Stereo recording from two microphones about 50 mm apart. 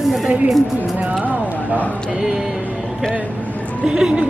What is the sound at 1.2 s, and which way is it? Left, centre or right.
Speech, right.